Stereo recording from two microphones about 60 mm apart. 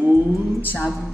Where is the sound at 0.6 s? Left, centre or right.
Left.